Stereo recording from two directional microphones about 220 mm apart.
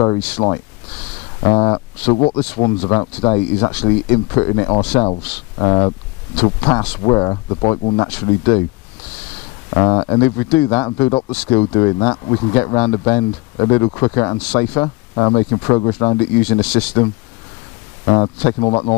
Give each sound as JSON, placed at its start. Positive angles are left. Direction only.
{"t": 0.0, "sound": "speech", "side_deg": 20}
{"t": 9.7, "sound": "speech", "side_deg": 20}
{"t": 10.2, "sound": "speech", "side_deg": 10}
{"t": 10.6, "sound": "speech", "side_deg": 20}
{"t": 18.0, "sound": "speech", "side_deg": 25}